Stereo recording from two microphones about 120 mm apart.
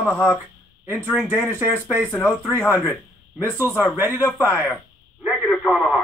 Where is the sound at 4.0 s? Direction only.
20° right (ahead or behind).